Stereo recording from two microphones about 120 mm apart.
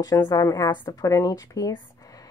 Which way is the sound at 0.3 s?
30° left (ahead or behind).